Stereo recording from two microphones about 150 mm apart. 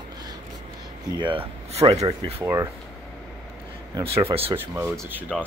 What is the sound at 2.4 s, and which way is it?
Speech, 20° right (ahead or behind).